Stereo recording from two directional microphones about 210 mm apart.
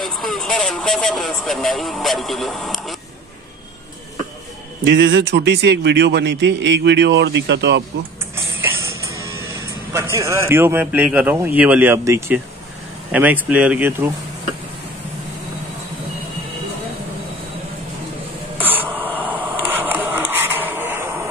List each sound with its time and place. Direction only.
0.0 s speech: centre (ahead or behind)
4.8 s a man's voice: 55° right (ahead or behind)
8.6 s music: 15° right (ahead or behind)
10.1 s a man's voice: 15° right (ahead or behind)
18.6 s a sound: 10° right (ahead or behind)